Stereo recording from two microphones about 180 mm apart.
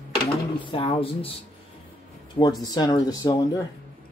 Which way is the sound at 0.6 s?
30° left (ahead or behind).